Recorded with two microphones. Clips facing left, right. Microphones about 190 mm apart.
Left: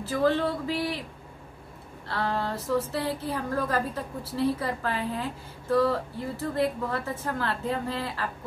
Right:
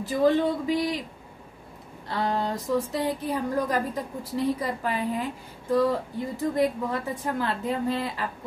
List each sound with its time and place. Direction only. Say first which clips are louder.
0.0 s a woman's voice: right 3 dB; 15° right (ahead or behind)
2.0 s a woman's voice: right 2 dB; 15° right (ahead or behind)